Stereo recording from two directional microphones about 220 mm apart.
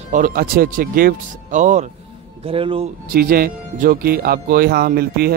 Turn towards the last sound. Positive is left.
turn(degrees=-45)  # may be behind; listen again after turning